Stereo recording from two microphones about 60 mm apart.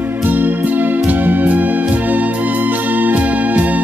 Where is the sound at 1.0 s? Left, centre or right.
Right.